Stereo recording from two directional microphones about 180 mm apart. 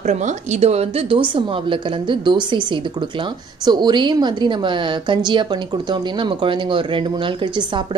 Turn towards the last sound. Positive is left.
turn(degrees=-25)  # may be behind; listen again after turning